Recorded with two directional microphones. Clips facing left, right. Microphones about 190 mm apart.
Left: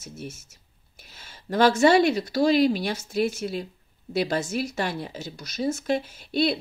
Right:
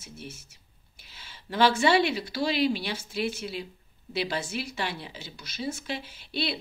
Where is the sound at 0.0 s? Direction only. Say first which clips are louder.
Left 5 dB; 45° left (ahead or behind).